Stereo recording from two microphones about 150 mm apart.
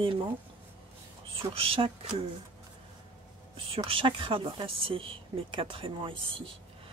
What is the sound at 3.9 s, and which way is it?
Speech, 35° right (ahead or behind).